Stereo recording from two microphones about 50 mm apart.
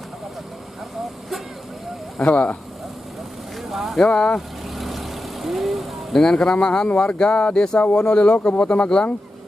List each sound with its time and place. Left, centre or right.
2.1 s speech: left
3.6 s a sound: centre
4.1 s speech: left
4.7 s vehicle: centre
6.1 s speech: centre